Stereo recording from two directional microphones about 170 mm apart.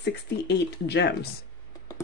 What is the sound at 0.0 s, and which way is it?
Speech, 90° left.